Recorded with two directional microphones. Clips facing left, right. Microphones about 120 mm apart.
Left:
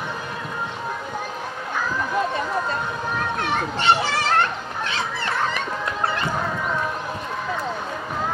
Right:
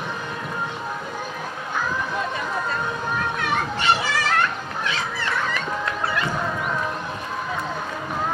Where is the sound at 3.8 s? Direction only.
35° left (ahead or behind).